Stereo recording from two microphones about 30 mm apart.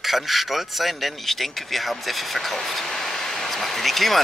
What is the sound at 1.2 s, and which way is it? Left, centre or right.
Speech, centre.